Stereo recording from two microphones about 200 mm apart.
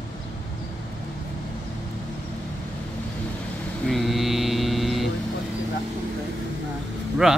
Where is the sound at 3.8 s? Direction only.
Centre (ahead or behind).